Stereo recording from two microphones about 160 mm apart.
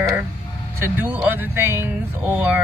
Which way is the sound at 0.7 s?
10° right (ahead or behind).